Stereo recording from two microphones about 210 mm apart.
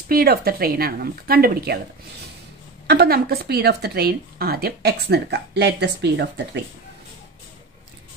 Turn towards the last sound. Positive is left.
turn(degrees=-55)  # may be behind; listen again after turning